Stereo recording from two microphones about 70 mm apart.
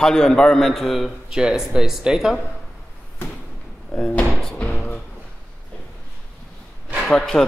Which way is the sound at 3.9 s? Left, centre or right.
Centre.